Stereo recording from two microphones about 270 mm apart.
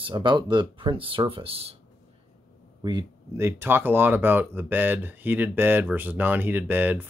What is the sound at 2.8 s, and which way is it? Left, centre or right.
Speech, centre.